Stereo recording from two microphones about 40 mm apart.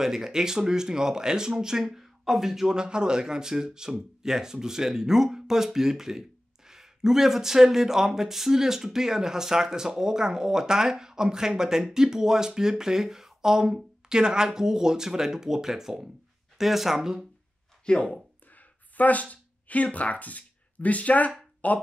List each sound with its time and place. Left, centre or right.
0.0 s speech: centre
17.8 s speech: left
18.9 s speech: left